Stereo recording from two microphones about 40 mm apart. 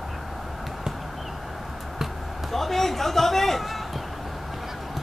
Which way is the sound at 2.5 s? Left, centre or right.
Centre.